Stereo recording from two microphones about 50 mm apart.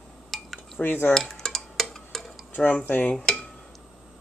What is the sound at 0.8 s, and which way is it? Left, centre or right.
Speech, left.